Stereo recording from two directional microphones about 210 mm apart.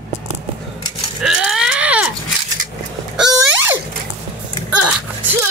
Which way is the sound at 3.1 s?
Centre (ahead or behind).